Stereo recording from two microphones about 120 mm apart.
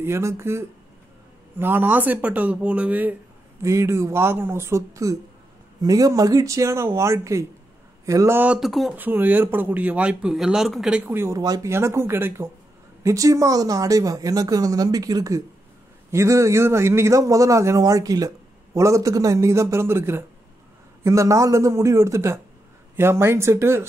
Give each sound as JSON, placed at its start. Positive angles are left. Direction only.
{"t": 0.0, "sound": "a man's voice", "side_deg": -20}
{"t": 8.4, "sound": "speech", "side_deg": -5}
{"t": 8.9, "sound": "speech", "side_deg": -15}
{"t": 11.1, "sound": "a man's voice", "side_deg": -20}